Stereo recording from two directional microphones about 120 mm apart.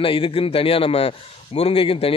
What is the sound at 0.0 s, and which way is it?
A man's voice, 50° left (ahead or behind).